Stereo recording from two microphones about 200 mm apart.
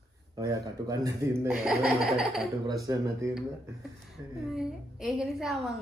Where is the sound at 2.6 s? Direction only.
15° right (ahead or behind).